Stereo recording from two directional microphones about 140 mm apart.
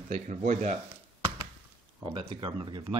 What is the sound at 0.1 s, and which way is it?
Speech, 65° right (ahead or behind).